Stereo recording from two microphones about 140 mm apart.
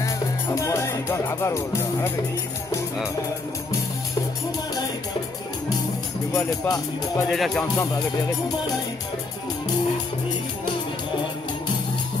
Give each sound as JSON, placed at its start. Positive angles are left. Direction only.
{"t": 0.6, "sound": "speech", "side_deg": 20}
{"t": 6.3, "sound": "speech", "side_deg": 20}
{"t": 7.2, "sound": "speech", "side_deg": 0}